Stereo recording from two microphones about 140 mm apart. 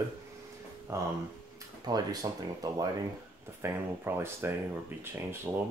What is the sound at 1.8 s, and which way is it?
Speech, 25° right (ahead or behind).